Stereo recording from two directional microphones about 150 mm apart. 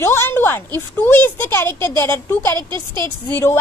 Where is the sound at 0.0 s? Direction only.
15° left (ahead or behind).